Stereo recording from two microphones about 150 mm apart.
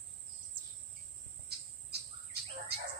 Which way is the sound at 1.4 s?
90° right.